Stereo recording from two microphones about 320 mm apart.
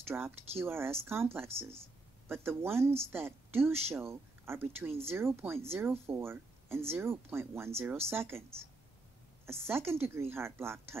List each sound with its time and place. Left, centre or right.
0.0 s a woman's voice: centre